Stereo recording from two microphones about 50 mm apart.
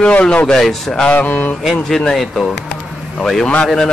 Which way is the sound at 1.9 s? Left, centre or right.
Centre.